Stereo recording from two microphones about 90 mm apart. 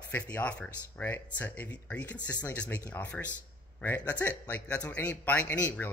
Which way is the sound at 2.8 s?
30° left (ahead or behind).